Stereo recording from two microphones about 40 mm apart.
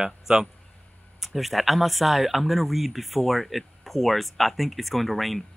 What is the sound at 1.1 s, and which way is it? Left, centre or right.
Speech, centre.